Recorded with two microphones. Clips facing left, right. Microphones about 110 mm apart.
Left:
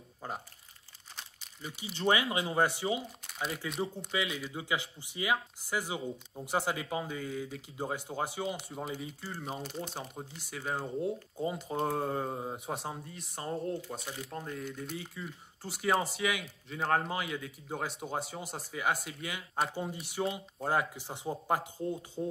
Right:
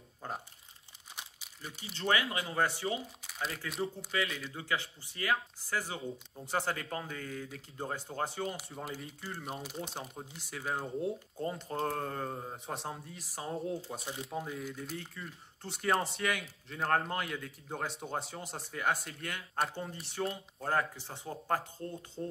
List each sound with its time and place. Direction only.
0.2 s speech: 5° left (ahead or behind)
2.0 s speech: 20° left (ahead or behind)
3.3 s crumpling: centre (ahead or behind)
4.1 s speech: 15° left (ahead or behind)
12.6 s speech: centre (ahead or behind)
14.0 s speech: 25° right (ahead or behind)
14.3 s speech: 5° right (ahead or behind); by 22.3 s 15° left (ahead or behind)